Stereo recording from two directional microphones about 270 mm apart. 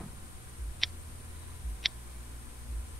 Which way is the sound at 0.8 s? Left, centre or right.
Centre.